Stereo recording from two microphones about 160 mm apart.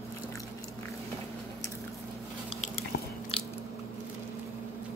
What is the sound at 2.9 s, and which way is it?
Biting, 75° left (ahead or behind).